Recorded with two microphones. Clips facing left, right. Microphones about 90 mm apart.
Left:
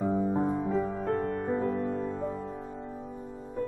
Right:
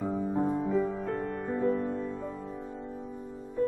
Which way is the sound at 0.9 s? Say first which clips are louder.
Left 3 dB; 40° left (ahead or behind).